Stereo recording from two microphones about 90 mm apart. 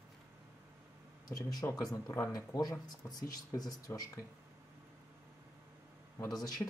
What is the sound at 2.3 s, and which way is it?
Speech, 40° left (ahead or behind).